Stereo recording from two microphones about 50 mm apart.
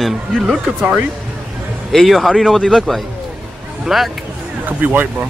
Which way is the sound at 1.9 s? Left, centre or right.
Centre.